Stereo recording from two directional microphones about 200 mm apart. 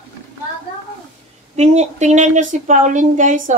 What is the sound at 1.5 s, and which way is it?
A woman's voice, 35° right (ahead or behind).